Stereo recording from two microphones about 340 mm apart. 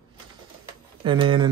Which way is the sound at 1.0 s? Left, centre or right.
Centre.